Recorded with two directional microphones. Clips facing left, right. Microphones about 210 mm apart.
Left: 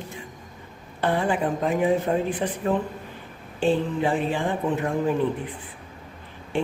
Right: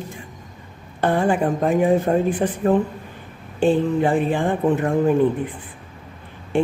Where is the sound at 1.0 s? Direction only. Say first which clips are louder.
Right 4 dB; 50° right (ahead or behind).